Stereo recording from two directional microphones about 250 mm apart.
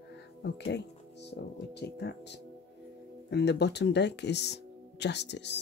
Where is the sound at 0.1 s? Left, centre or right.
Left.